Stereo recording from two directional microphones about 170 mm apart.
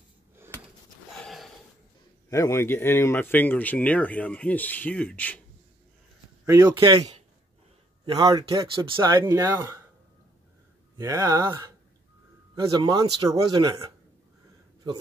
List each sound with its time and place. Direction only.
1.2 s a sound: centre (ahead or behind)
2.2 s speech: 20° left (ahead or behind)
6.4 s speech: 15° right (ahead or behind)
9.2 s speech: 15° right (ahead or behind)
11.0 s speech: 20° right (ahead or behind)